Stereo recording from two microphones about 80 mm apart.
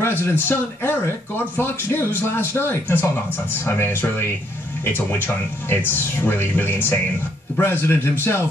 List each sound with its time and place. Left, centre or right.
0.0 s a man's voice: left